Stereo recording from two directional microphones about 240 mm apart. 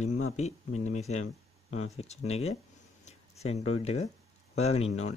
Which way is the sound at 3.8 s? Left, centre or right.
Left.